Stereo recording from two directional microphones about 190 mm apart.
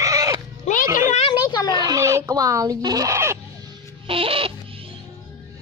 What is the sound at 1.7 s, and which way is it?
Fowl, 20° right (ahead or behind).